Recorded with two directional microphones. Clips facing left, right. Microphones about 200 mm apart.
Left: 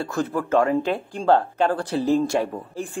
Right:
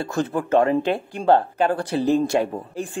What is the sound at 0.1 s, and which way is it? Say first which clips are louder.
Speech: right 2 dB; 25° right (ahead or behind).